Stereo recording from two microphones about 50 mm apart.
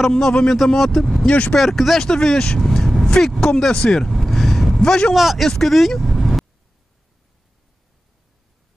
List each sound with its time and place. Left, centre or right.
0.1 s speech: centre
1.2 s speech: left
1.6 s speech: centre
4.2 s vehicle: centre
4.8 s speech: centre
5.1 s speech: centre
5.5 s vehicle: centre